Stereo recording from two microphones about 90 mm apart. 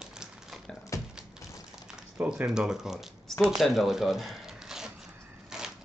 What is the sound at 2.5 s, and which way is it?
Speech, 5° right (ahead or behind).